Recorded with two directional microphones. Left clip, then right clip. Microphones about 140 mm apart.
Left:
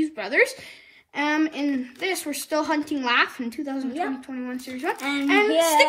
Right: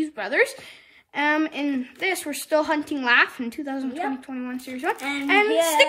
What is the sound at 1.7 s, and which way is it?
Speech, 40° right (ahead or behind).